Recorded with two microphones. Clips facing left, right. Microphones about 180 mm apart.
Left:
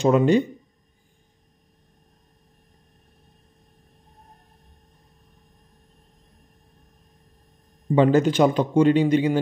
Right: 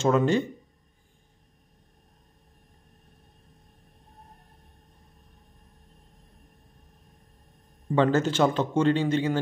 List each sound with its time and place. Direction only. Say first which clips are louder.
0.0 s a man's voice: left 5 dB; 15° left (ahead or behind)
7.9 s a man's voice: left 5 dB; 15° left (ahead or behind)